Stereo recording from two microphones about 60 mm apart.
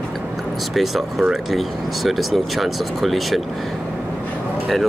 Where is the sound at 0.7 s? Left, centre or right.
Centre.